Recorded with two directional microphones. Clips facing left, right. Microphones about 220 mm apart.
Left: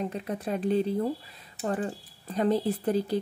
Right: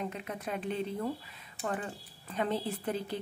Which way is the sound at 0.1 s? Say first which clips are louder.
Left 6 dB; 35° left (ahead or behind).